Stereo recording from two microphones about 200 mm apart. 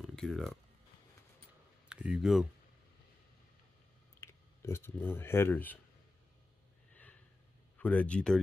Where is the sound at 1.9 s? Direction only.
5° right (ahead or behind).